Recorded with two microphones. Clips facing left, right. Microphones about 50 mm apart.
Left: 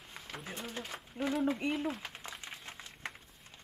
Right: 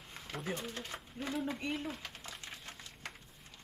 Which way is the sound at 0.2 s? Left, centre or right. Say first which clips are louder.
Right 3 dB; centre.